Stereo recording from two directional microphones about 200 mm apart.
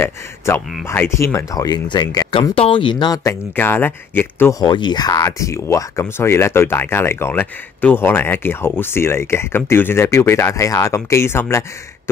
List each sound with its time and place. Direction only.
0.5 s speech: 15° left (ahead or behind)
3.5 s speech: 10° left (ahead or behind)